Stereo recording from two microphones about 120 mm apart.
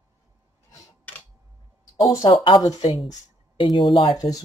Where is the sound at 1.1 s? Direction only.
10° left (ahead or behind).